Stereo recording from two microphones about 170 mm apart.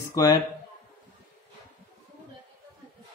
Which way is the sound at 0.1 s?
20° left (ahead or behind).